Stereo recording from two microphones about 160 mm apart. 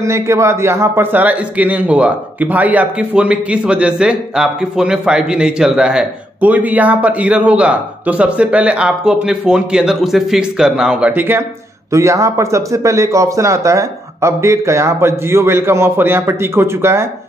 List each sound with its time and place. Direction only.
0.0 s a man's voice: 15° right (ahead or behind)